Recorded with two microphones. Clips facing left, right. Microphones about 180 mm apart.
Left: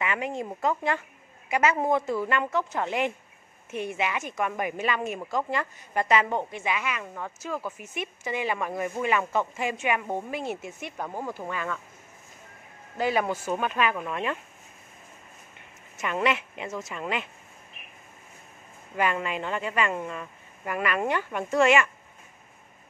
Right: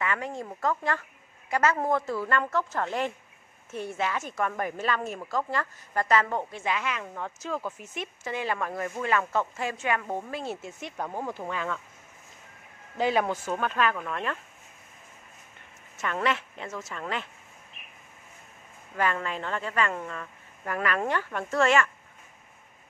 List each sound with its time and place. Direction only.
0.0 s a woman's voice: 15° left (ahead or behind)
11.0 s speech: centre (ahead or behind)
12.9 s a woman's voice: 5° left (ahead or behind)
16.0 s a woman's voice: 15° left (ahead or behind)
18.9 s a woman's voice: 15° left (ahead or behind)